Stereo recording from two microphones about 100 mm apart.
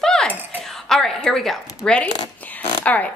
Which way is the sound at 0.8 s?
5° left (ahead or behind).